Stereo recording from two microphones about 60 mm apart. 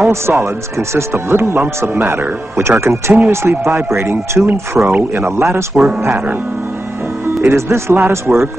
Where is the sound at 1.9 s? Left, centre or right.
Right.